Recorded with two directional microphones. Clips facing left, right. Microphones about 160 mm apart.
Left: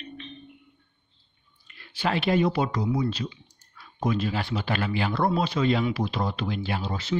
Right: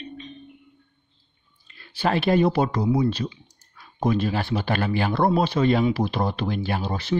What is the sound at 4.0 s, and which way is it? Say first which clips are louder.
Speech: right 4 dB; 50° right (ahead or behind).